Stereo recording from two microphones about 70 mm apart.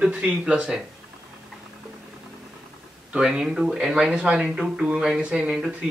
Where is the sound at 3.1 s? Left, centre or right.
Centre.